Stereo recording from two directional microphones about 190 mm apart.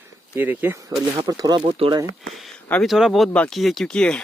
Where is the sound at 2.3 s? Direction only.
Centre (ahead or behind).